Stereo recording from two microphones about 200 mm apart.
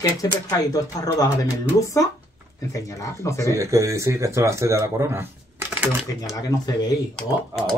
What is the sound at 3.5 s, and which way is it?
Speech, 15° right (ahead or behind).